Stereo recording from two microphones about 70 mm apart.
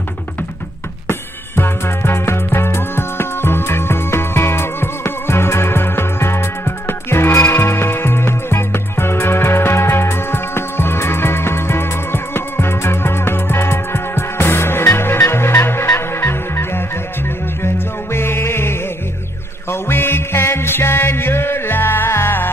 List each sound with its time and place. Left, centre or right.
1.0 s music: left